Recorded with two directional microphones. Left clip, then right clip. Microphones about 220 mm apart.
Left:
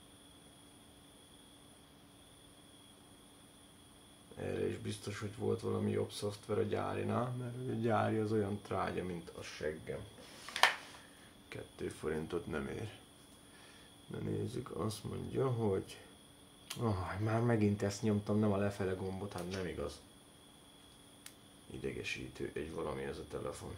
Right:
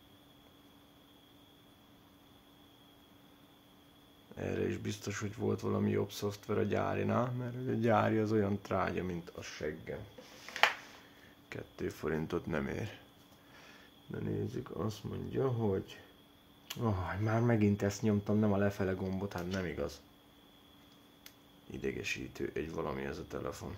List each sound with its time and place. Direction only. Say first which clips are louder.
4.4 s speech: right 2 dB; 45° right (ahead or behind)
11.4 s speech: right 3 dB; 40° right (ahead or behind)
14.1 s speech: right 2 dB; 25° right (ahead or behind); by 20.0 s 45° right (ahead or behind)
21.8 s speech: right 3 dB; 45° right (ahead or behind)